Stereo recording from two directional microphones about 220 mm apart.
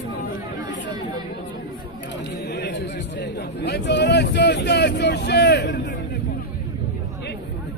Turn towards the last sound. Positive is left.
turn(degrees=50)  # may be behind; listen again after turning